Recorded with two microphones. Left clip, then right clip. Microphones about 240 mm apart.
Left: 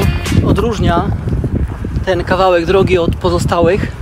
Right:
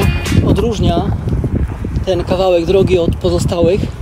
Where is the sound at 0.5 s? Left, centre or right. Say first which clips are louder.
Left 1 dB; centre.